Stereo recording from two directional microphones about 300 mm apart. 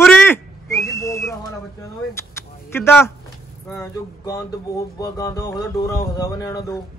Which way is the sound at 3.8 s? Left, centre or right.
Centre.